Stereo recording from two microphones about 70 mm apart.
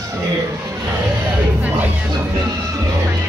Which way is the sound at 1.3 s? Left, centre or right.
Right.